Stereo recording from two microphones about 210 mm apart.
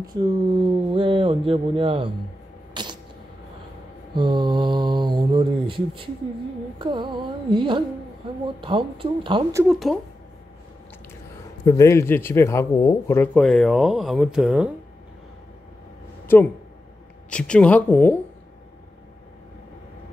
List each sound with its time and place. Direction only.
0.0 s speech: 20° right (ahead or behind)
2.7 s a sound: 20° right (ahead or behind)
4.1 s speech: 20° right (ahead or behind)
9.7 s speech: centre (ahead or behind)
11.6 s a man's voice: 15° left (ahead or behind); by 14.7 s 5° right (ahead or behind)
16.3 s a man's voice: 10° left (ahead or behind)